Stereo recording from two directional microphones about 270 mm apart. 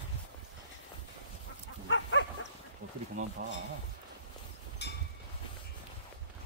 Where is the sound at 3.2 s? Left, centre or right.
Right.